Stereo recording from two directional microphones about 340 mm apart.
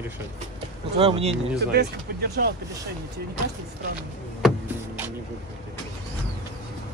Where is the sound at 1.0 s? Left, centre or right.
Centre.